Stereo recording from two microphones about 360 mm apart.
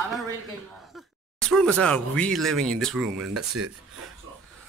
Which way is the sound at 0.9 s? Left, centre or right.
Centre.